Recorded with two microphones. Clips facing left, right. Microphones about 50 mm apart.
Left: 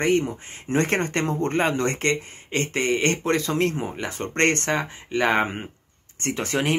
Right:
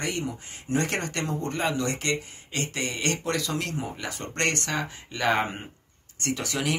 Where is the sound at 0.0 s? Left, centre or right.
Left.